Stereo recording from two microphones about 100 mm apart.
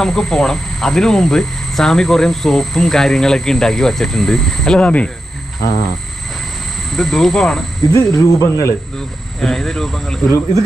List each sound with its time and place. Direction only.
0.0 s speech: 5° left (ahead or behind)
6.9 s speech: centre (ahead or behind)
7.9 s speech: 35° left (ahead or behind)
8.9 s speech: 5° left (ahead or behind)